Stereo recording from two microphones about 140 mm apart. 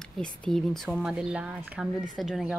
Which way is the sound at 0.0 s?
5° left (ahead or behind).